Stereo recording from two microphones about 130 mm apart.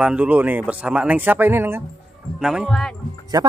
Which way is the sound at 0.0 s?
10° right (ahead or behind).